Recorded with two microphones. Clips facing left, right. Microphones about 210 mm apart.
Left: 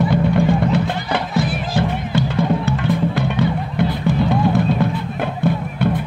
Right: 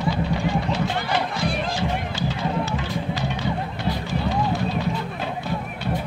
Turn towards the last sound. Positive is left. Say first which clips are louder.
# left 9 dB
turn(degrees=55)  # may be behind; listen again after turning